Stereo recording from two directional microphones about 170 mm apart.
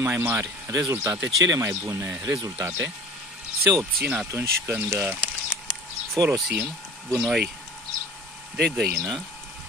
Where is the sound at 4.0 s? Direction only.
5° right (ahead or behind).